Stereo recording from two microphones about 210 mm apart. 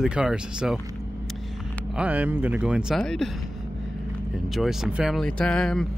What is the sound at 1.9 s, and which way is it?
Speech, 5° right (ahead or behind).